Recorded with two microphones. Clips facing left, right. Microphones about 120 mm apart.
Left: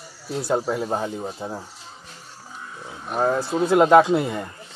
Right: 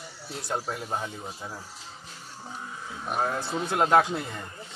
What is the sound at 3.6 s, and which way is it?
Speech, 90° left.